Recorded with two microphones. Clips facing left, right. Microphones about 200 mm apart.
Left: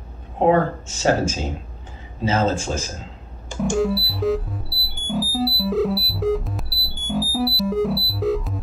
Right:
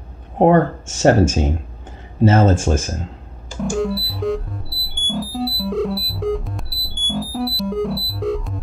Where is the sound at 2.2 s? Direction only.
50° right (ahead or behind).